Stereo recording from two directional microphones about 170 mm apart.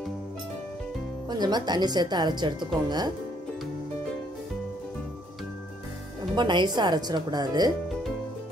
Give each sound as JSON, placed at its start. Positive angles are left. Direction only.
{"t": 1.3, "sound": "a woman's voice", "side_deg": -25}
{"t": 6.3, "sound": "a woman's voice", "side_deg": -25}